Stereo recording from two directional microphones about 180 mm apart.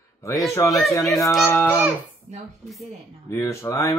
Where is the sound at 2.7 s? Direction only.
Centre (ahead or behind).